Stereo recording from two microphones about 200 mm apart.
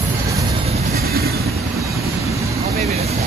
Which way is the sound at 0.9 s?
50° right (ahead or behind).